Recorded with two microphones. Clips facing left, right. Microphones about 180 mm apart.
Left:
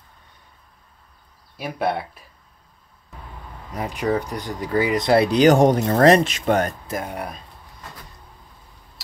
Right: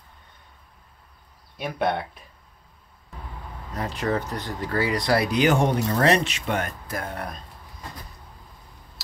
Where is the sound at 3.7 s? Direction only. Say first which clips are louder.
Left 3 dB; 15° left (ahead or behind); by 6.7 s 40° left (ahead or behind).